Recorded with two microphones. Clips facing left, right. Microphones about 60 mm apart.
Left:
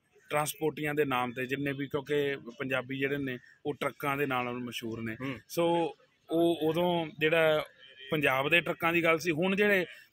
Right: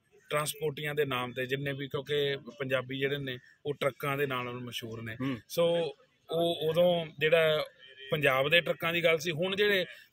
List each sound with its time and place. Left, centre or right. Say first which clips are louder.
0.3 s speech: left 1 dB; centre
3.7 s speech: right 1 dB; centre
4.2 s speech: left 2 dB; left
8.5 s a man's voice: even; left